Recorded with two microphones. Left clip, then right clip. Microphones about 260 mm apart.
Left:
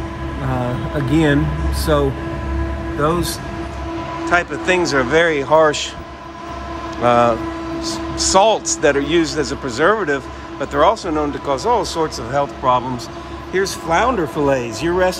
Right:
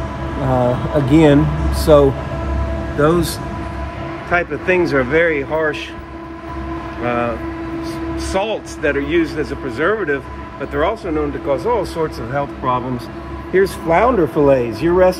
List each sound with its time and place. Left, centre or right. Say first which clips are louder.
0.4 s speech: right 7 dB; centre
4.3 s speech: even; centre
7.0 s speech: left 6 dB; centre
13.8 s speech: right 1 dB; centre